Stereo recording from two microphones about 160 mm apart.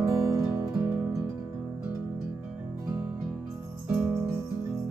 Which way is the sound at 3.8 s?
10° right (ahead or behind).